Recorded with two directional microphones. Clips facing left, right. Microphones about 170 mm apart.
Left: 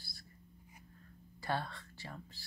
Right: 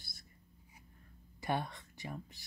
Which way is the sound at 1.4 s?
20° right (ahead or behind).